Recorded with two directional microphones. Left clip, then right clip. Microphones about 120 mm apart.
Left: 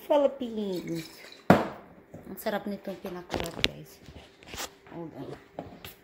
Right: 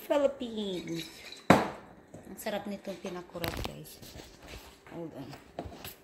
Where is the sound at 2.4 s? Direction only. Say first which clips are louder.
Left 4 dB; 55° left (ahead or behind).